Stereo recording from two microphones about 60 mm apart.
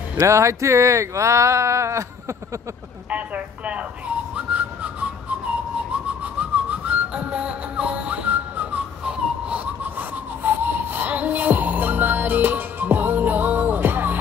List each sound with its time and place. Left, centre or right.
0.2 s speech: right
3.1 s a woman's voice: right
4.4 s whistling: right
9.9 s music: right